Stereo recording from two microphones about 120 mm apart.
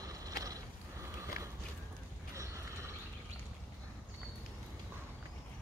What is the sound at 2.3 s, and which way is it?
Mechanisms, 25° right (ahead or behind).